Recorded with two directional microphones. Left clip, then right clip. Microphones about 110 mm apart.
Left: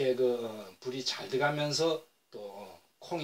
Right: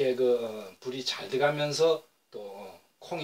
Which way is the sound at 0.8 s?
25° left (ahead or behind).